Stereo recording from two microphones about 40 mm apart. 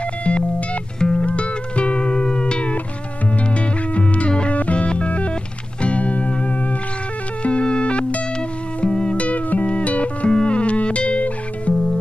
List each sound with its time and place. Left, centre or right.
0.2 s music: left
7.4 s music: left
11.7 s music: centre